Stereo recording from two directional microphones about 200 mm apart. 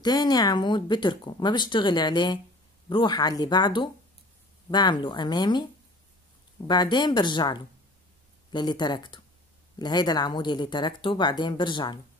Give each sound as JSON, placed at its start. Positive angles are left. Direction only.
{"t": 0.0, "sound": "speech", "side_deg": 20}
{"t": 6.7, "sound": "speech", "side_deg": 20}